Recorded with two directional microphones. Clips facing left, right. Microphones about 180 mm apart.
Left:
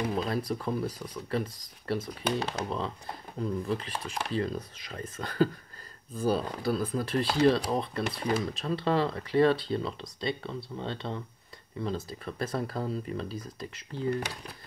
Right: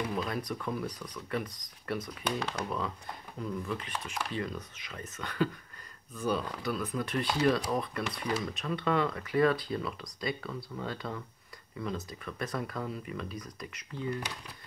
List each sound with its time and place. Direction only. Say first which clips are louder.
0.1 s speech: left 4 dB; 30° left (ahead or behind)